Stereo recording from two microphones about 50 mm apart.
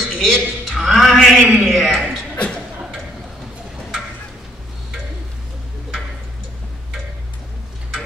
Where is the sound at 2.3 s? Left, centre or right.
Left.